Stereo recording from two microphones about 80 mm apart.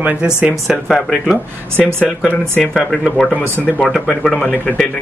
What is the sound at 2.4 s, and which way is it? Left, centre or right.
Speech, centre.